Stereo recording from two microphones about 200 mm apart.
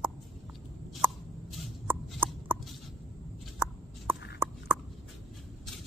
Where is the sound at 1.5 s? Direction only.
10° right (ahead or behind).